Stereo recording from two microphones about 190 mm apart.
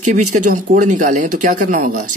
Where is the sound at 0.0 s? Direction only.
40° right (ahead or behind).